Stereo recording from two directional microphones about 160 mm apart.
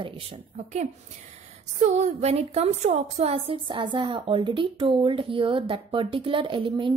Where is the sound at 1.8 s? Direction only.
45° right (ahead or behind).